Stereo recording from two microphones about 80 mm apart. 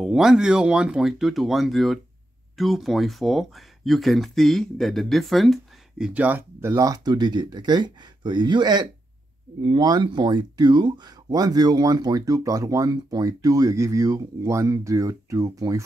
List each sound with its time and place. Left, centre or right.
0.0 s speech: centre
6.1 s speech: right
6.6 s speech: right
7.1 s speech: right